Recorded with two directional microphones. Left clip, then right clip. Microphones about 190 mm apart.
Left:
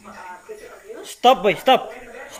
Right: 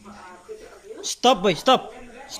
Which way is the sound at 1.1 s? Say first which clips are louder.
Left 3 dB; 30° right (ahead or behind).